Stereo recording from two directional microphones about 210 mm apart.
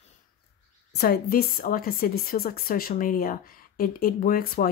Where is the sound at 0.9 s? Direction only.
45° left (ahead or behind).